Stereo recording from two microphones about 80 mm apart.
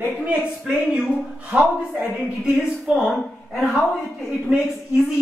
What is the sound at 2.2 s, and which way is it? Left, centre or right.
A woman's voice, centre.